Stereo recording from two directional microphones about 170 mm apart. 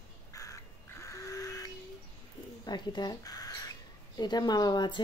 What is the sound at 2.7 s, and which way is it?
Speech, 25° left (ahead or behind).